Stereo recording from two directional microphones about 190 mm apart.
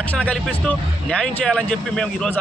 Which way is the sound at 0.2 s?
5° left (ahead or behind).